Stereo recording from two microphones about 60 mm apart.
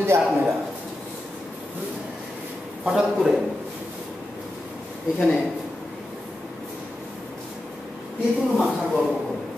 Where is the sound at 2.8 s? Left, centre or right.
Centre.